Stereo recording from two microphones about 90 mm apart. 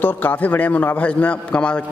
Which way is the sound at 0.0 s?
20° left (ahead or behind).